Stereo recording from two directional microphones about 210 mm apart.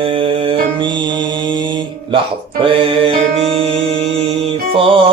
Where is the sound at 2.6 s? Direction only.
25° right (ahead or behind).